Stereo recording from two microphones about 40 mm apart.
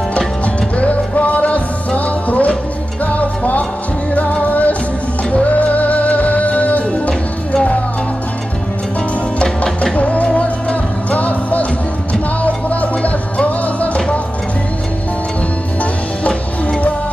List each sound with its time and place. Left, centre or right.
0.7 s music: left
9.4 s music: left